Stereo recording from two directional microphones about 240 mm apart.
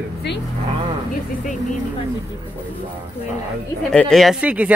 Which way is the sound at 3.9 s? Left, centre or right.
Centre.